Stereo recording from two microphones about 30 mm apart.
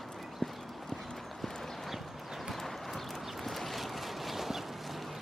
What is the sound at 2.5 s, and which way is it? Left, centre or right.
Clip-clop, centre.